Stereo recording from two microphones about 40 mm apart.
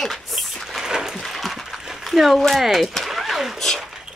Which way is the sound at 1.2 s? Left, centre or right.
Centre.